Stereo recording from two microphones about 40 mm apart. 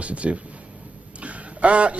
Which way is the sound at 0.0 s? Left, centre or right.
Right.